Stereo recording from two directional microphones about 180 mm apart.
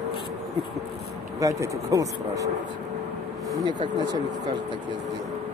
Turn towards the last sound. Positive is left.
turn(degrees=-20)  # may be behind; listen again after turning